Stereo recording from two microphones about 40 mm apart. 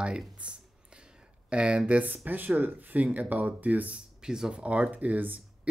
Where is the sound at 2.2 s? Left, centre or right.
Right.